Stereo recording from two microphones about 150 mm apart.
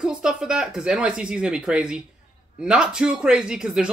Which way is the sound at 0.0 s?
5° right (ahead or behind).